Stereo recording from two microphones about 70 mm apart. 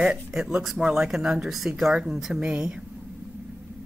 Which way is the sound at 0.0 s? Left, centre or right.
Centre.